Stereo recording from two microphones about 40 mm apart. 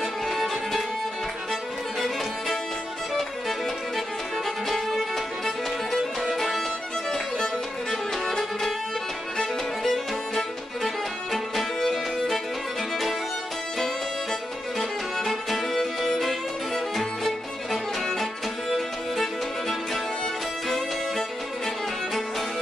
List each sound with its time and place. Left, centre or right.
0.0 s music: centre
7.9 s music: centre
9.8 s music: centre
14.8 s music: centre